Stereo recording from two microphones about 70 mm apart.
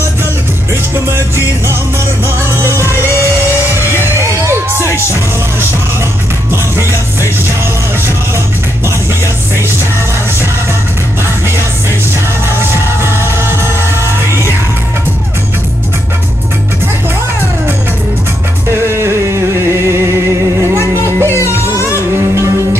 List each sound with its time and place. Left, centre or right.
1.0 s music: right
6.5 s music: right
12.4 s music: right
18.7 s music: right